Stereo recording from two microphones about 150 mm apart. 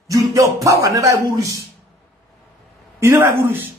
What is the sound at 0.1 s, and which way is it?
Speech, 25° right (ahead or behind).